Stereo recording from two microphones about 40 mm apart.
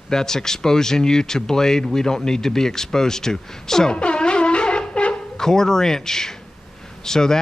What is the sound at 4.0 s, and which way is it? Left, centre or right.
Wind instrument, left.